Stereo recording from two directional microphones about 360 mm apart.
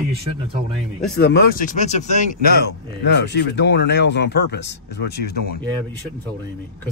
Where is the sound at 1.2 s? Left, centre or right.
Left.